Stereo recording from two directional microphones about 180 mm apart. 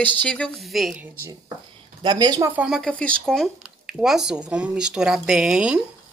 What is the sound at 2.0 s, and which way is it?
Speech, 25° right (ahead or behind).